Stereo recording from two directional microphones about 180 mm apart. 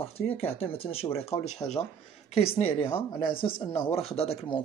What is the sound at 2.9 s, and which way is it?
Speech, 30° left (ahead or behind).